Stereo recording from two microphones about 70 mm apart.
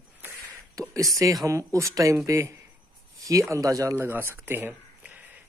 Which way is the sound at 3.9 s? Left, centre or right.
Right.